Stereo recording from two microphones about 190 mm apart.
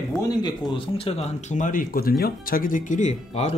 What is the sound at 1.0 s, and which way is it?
Speech, 30° left (ahead or behind).